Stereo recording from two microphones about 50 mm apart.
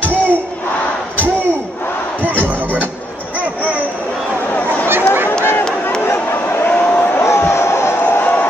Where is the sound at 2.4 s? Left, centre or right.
Left.